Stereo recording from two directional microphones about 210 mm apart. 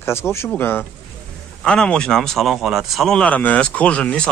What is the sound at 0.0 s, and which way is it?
Speech, 10° left (ahead or behind).